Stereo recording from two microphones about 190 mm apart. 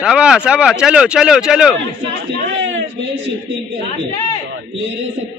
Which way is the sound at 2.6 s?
90° right.